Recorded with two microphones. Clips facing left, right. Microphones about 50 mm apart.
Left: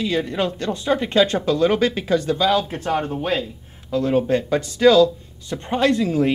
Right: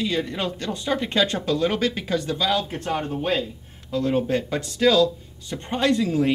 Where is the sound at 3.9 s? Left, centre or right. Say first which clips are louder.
Left 3 dB; centre.